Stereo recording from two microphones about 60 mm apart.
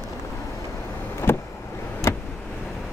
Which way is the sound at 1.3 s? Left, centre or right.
Left.